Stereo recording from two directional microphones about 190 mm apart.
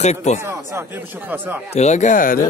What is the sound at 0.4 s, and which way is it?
Speech, 15° right (ahead or behind).